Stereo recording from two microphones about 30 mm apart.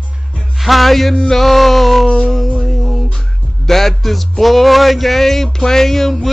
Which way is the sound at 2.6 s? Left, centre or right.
Centre.